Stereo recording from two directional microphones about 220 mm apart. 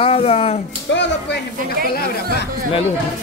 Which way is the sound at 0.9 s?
50° left (ahead or behind).